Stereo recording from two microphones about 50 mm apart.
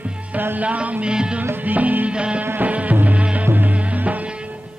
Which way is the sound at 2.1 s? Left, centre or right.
Right.